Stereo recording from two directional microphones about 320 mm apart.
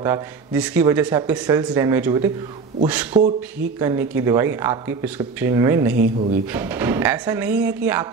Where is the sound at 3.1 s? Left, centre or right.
Right.